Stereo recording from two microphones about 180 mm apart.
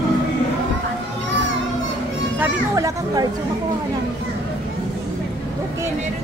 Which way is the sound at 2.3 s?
15° right (ahead or behind).